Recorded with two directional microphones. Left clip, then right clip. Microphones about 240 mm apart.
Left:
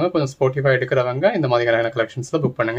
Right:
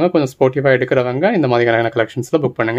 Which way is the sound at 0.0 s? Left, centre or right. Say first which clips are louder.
Right 5 dB; right.